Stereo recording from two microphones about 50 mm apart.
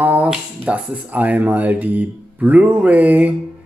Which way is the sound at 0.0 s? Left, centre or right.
Right.